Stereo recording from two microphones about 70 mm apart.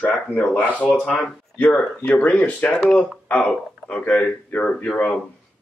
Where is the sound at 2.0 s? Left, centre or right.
Left.